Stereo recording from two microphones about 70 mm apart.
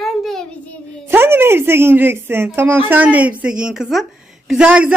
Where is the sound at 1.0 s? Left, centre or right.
Right; by 4.0 s centre.